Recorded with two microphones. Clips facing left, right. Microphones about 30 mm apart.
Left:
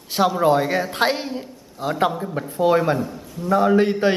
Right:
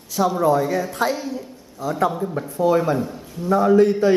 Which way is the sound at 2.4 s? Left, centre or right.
Left.